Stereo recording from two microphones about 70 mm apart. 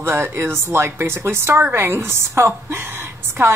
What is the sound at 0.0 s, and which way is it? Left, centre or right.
Speech, right.